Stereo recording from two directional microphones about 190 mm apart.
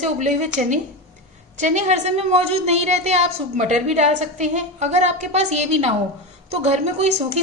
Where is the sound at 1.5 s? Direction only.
40° right (ahead or behind).